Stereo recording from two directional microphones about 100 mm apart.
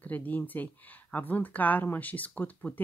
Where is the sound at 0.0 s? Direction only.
15° left (ahead or behind).